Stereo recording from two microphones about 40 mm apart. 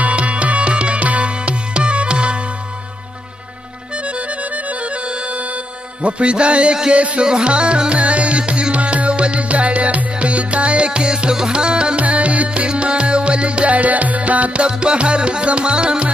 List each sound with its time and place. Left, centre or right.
0.0 s music: right
6.0 s music: right
14.6 s music: right